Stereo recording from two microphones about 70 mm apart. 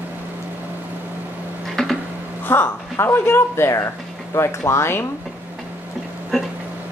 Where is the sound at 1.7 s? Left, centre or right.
Centre.